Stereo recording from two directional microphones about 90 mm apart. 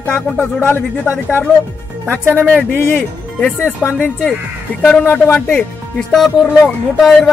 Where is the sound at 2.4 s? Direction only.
20° right (ahead or behind).